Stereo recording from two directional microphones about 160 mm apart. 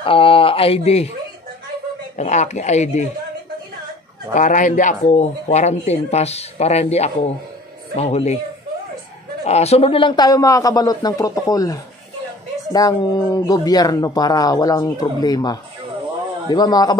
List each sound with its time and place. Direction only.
0.0 s speech: 35° left (ahead or behind)
2.1 s speech: 45° left (ahead or behind)
4.3 s speech: 55° left (ahead or behind)
9.4 s speech: 40° left (ahead or behind); by 17.0 s 25° left (ahead or behind)